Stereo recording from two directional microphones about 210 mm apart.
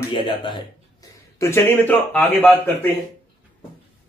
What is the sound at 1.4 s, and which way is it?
A man's voice, 10° left (ahead or behind).